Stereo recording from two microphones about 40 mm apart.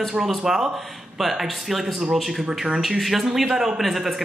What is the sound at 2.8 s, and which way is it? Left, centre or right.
Speech, centre.